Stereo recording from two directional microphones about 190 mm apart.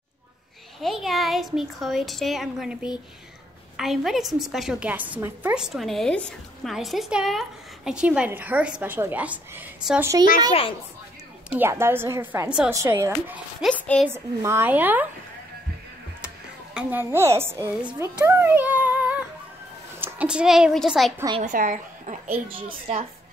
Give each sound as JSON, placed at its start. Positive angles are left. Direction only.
{"t": 0.7, "sound": "a woman's voice", "side_deg": 0}
{"t": 11.5, "sound": "a woman's voice", "side_deg": -10}
{"t": 13.7, "sound": "a sound", "side_deg": 5}
{"t": 14.0, "sound": "a woman's voice", "side_deg": -15}
{"t": 16.7, "sound": "a woman's voice", "side_deg": -10}
{"t": 18.2, "sound": "cat", "side_deg": -10}
{"t": 20.0, "sound": "a child's voice", "side_deg": -10}
{"t": 21.4, "sound": "a woman's voice", "side_deg": -45}